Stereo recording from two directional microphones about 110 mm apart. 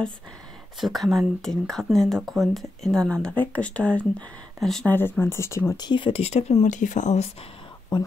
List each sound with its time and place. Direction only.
0.7 s speech: centre (ahead or behind)
4.8 s speech: 15° left (ahead or behind)
5.8 s speech: 45° left (ahead or behind)
6.2 s speech: 85° left
7.9 s speech: 45° left (ahead or behind)